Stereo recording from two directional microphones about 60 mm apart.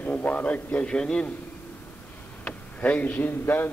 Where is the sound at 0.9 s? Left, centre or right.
Centre.